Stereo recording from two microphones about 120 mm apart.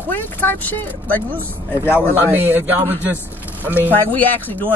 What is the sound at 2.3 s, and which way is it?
Speech, 15° right (ahead or behind).